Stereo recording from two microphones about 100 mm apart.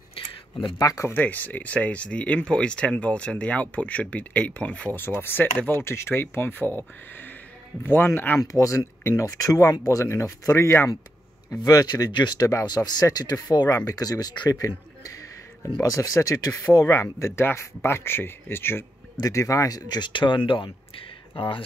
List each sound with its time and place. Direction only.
0.1 s a sound: 65° left (ahead or behind)
0.7 s speech: 35° left (ahead or behind)
1.0 s speech: 15° left (ahead or behind)
8.4 s speech: 30° left (ahead or behind)
11.6 s speech: 40° left (ahead or behind)
15.8 s speech: 30° left (ahead or behind)
19.1 s speech: 35° left (ahead or behind); by 21.6 s 60° left (ahead or behind)